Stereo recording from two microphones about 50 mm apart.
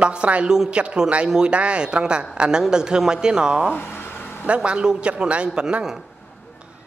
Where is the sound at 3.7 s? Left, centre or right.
Left.